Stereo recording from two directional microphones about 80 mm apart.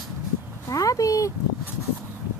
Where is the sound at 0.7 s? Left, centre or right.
Left.